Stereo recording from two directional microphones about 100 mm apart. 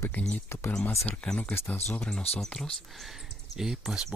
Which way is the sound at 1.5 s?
20° left (ahead or behind).